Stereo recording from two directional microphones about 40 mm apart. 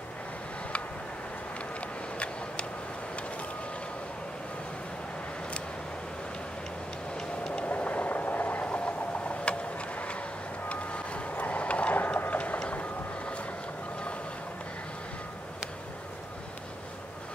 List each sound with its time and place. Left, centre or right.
1.8 s vehicle: left
7.2 s vehicle: centre
7.6 s train: left
10.7 s vehicle: left
12.3 s a sound: left
12.7 s vehicle: left